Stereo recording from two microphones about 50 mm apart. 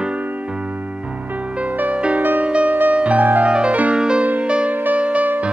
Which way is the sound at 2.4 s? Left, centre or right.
Right.